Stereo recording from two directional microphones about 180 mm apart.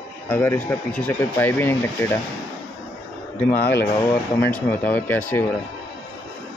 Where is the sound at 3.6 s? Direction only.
65° left (ahead or behind).